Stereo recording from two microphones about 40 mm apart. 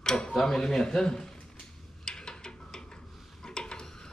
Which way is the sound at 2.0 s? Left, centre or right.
Centre.